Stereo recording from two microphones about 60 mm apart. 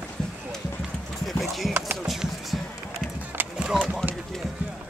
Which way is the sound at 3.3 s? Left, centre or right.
Right.